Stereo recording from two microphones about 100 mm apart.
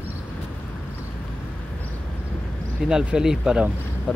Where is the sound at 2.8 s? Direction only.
5° right (ahead or behind).